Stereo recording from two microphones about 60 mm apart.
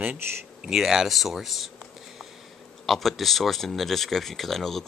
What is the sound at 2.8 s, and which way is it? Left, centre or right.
Speech, centre.